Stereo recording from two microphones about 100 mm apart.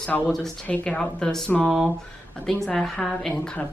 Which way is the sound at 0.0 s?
15° left (ahead or behind).